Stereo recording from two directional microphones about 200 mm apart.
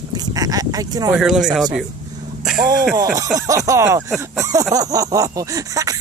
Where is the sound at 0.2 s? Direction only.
20° right (ahead or behind).